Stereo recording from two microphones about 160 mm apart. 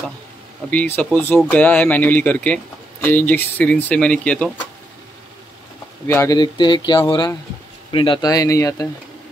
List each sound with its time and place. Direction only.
0.7 s speech: 10° left (ahead or behind)
6.0 s speech: 15° left (ahead or behind)
6.3 s speech: 25° left (ahead or behind)